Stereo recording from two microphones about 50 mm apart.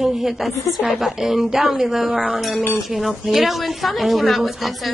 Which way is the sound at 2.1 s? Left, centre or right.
Right.